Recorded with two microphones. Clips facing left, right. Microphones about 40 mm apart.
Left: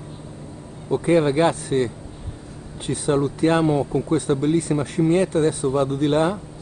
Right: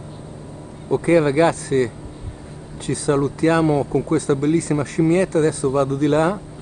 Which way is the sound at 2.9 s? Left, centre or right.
Right.